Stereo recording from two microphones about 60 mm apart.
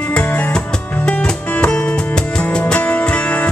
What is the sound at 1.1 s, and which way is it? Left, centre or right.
Music, centre.